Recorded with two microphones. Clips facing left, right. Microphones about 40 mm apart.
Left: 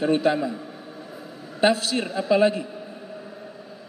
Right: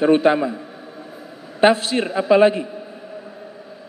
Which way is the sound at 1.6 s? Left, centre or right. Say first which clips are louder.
Right 5 dB; right.